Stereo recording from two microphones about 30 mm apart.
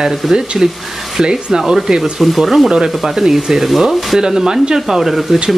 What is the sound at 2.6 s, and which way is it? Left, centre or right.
Speech, centre.